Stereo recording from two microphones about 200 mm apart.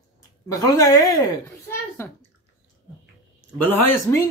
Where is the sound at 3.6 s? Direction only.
10° left (ahead or behind).